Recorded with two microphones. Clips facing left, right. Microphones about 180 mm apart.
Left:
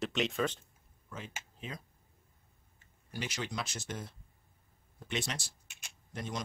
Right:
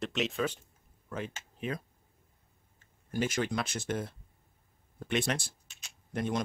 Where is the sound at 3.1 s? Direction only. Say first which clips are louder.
Right 8 dB; 50° right (ahead or behind).